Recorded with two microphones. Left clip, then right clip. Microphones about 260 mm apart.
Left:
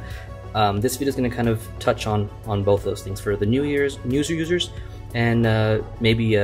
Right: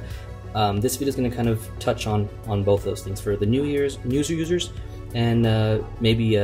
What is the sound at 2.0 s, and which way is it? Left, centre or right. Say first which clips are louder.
Speech: left 2 dB; centre.